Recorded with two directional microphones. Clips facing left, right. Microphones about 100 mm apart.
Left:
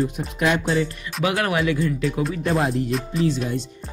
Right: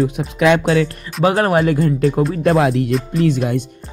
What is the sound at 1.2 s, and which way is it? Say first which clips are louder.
Speech: right 7 dB; 40° right (ahead or behind).